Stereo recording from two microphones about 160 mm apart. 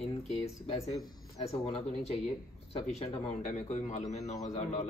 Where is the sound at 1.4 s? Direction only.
40° left (ahead or behind).